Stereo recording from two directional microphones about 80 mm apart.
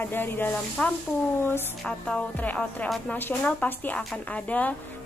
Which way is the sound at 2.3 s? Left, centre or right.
Centre.